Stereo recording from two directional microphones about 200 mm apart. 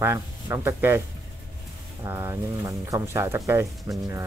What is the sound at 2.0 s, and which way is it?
Speech, 15° right (ahead or behind).